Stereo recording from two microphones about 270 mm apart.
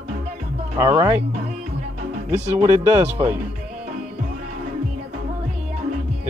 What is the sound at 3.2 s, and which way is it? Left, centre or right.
Speech, centre.